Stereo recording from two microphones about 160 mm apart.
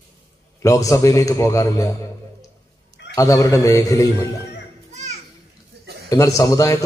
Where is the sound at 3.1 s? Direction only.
20° left (ahead or behind).